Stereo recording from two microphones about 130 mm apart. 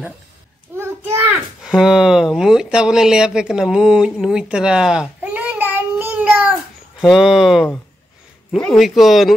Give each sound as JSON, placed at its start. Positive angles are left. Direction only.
{"t": 0.7, "sound": "a sound", "side_deg": -20}
{"t": 1.3, "sound": "speech", "side_deg": -5}
{"t": 7.0, "sound": "speech", "side_deg": 0}